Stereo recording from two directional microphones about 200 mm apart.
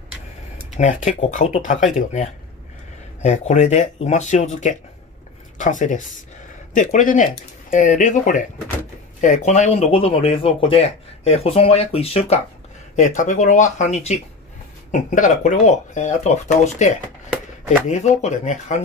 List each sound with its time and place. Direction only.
0.7 s speech: 40° left (ahead or behind)